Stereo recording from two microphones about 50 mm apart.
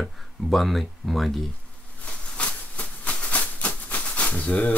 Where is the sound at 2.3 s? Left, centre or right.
Left.